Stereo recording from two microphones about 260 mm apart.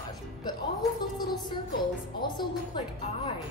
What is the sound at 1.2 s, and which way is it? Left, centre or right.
A woman's voice, centre.